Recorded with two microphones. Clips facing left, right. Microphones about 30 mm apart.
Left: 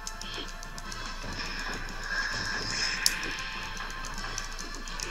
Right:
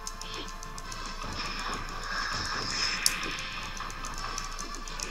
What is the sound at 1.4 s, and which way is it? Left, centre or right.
Music, centre.